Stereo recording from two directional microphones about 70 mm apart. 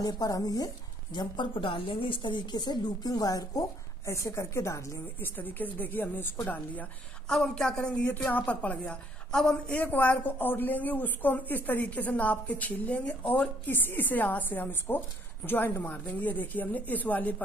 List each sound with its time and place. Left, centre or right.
0.0 s speech: left
1.1 s speech: left
4.0 s speech: left
5.2 s speech: left
7.2 s a woman's voice: centre
8.0 s speech: left
9.3 s a woman's voice: centre
9.7 s speech: left